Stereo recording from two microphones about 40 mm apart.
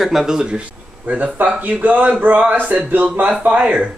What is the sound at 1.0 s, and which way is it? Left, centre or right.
Speech, right.